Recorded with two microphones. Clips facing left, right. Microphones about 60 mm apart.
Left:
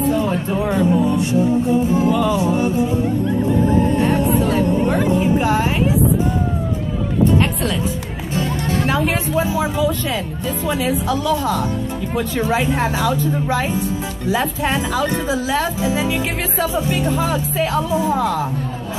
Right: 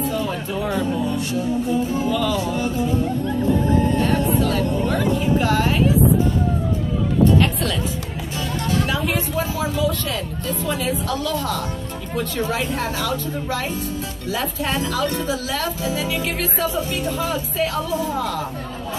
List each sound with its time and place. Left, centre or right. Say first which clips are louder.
0.1 s music: left 5 dB; left
8.4 s music: left 2 dB; left
9.3 s a woman's voice: left 4 dB; left